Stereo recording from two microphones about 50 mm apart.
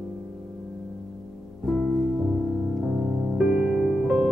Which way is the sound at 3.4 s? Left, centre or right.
Centre.